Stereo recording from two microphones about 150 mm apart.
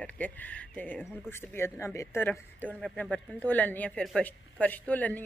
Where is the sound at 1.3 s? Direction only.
15° left (ahead or behind).